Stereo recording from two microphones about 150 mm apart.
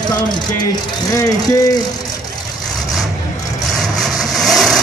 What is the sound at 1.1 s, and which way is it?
Speech, 25° left (ahead or behind).